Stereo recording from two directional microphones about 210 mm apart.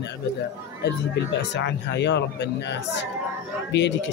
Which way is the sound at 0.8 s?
55° left (ahead or behind).